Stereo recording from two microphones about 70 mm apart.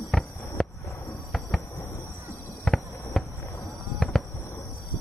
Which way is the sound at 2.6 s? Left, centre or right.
Centre.